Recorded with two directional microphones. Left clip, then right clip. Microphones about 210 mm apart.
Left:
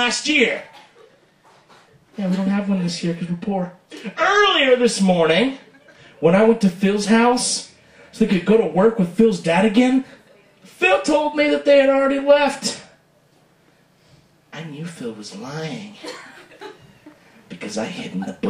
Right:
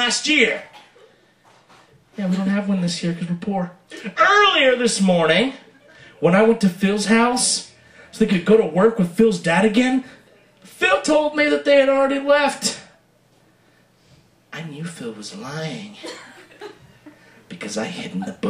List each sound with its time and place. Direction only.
0.0 s speech: centre (ahead or behind)
2.3 s speech: centre (ahead or behind)
14.5 s speech: centre (ahead or behind)
17.5 s speech: centre (ahead or behind)